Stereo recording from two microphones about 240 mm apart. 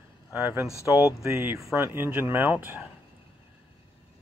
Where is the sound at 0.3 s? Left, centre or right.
Centre.